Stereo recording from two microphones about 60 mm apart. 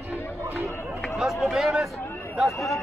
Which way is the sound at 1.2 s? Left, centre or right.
Centre.